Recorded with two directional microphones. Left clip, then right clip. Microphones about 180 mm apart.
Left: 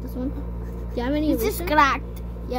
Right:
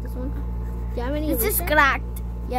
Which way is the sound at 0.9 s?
15° left (ahead or behind).